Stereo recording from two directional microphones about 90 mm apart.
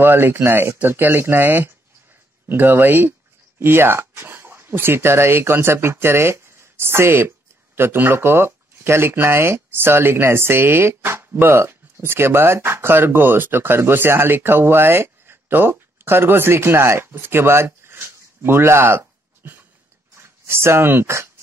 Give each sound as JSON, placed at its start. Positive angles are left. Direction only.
{"t": 0.0, "sound": "speech", "side_deg": -25}